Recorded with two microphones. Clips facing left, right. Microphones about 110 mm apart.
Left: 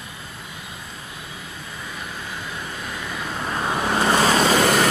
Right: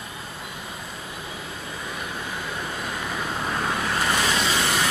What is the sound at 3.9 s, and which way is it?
Vehicle, 35° left (ahead or behind).